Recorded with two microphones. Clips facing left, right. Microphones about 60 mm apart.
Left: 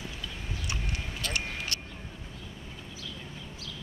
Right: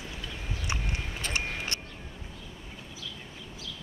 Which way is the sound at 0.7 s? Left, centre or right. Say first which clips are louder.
Right 3 dB; right.